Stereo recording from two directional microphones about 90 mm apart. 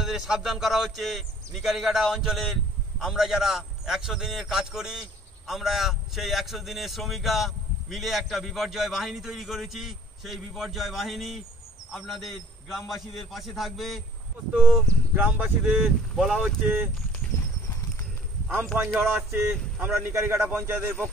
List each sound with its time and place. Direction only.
0.0 s a man's voice: 5° right (ahead or behind)
14.5 s speech: 10° right (ahead or behind)
15.8 s a man's voice: centre (ahead or behind)
18.9 s a man's voice: 20° right (ahead or behind)